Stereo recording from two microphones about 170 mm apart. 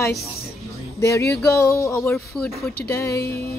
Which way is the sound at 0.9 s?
15° left (ahead or behind).